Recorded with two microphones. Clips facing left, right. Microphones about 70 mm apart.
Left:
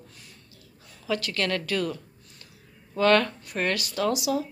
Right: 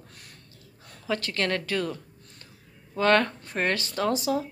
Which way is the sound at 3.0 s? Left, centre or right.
Right.